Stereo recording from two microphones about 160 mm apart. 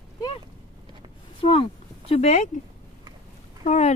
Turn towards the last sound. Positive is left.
turn(degrees=45)  # may be behind; listen again after turning